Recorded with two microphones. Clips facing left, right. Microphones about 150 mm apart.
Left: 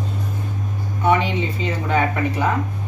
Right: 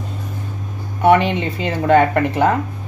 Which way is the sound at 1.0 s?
70° right (ahead or behind).